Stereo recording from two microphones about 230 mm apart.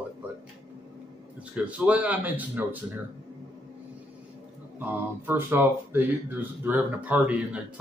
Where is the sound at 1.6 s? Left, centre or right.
Centre.